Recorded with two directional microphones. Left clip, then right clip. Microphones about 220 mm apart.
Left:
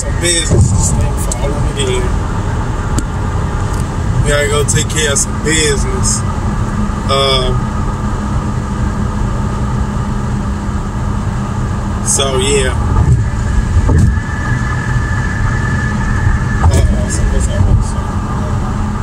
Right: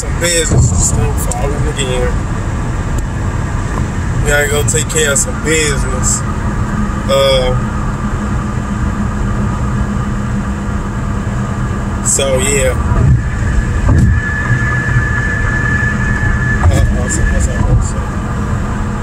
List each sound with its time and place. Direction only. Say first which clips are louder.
4.3 s speech: right 1 dB; 25° right (ahead or behind)
7.1 s speech: right 2 dB; 25° right (ahead or behind)